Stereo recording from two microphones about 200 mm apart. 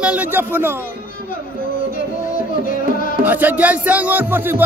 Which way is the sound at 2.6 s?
45° left (ahead or behind).